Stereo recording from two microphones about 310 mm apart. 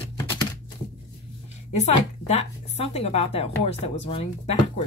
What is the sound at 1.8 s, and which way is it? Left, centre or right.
A woman's voice, left.